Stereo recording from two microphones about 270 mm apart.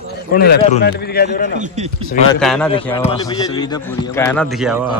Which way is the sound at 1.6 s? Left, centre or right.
Right.